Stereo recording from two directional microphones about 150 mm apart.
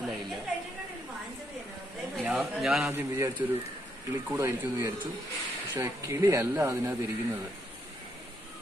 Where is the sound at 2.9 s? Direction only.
15° right (ahead or behind).